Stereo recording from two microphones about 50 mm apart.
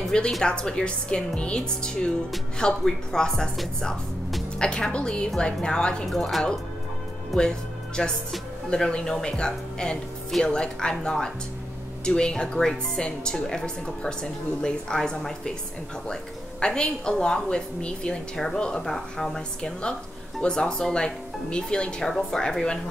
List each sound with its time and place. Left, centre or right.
0.4 s a woman's voice: centre
4.6 s a woman's voice: centre
6.0 s speech: centre
7.3 s a woman's voice: centre
22.0 s a woman's voice: centre